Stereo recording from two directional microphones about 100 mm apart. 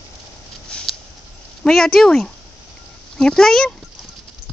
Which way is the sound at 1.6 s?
5° left (ahead or behind).